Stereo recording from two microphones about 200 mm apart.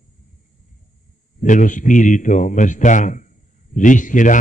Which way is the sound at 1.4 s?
40° left (ahead or behind).